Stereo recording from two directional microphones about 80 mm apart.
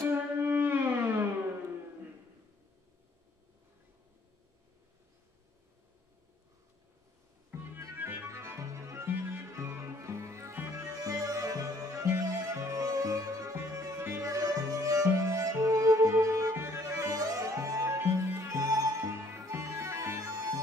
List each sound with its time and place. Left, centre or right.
0.1 s music: right
7.5 s music: right
11.0 s music: right